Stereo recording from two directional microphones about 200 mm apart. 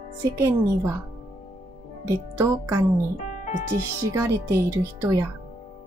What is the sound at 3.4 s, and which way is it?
Music, 35° left (ahead or behind).